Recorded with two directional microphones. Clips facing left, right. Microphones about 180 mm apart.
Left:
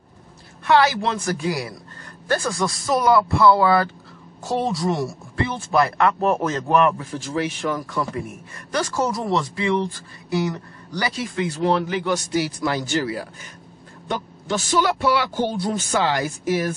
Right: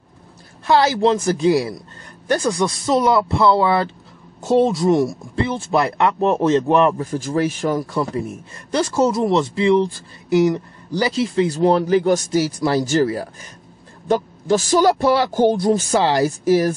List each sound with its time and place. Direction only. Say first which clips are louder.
0.7 s a man's voice: right 3 dB; 30° right (ahead or behind)
7.0 s speech: right 5 dB; 40° right (ahead or behind)
15.9 s speech: right 5 dB; 35° right (ahead or behind)